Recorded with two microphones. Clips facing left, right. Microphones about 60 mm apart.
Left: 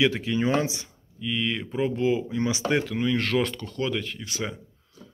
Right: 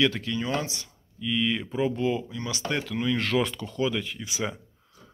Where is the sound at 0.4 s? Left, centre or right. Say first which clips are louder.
Left 6 dB; left.